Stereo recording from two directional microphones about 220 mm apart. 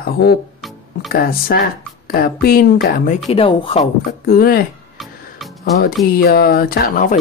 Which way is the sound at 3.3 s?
25° left (ahead or behind).